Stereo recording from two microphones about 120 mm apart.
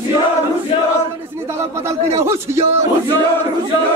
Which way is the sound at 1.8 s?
25° right (ahead or behind).